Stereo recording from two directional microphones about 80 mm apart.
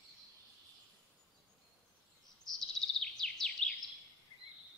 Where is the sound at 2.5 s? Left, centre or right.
Centre.